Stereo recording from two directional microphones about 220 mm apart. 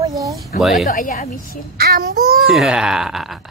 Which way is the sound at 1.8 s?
45° right (ahead or behind).